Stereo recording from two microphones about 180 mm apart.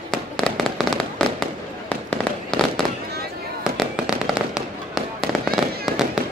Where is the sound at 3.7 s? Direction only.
5° right (ahead or behind).